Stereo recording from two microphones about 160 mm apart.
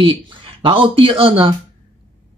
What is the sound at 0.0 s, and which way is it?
Speech, 30° right (ahead or behind).